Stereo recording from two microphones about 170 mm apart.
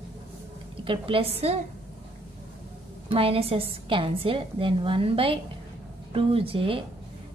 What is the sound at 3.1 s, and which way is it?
A woman's voice, 35° right (ahead or behind).